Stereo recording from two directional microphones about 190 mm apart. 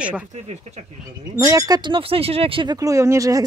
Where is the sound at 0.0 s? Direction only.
5° right (ahead or behind).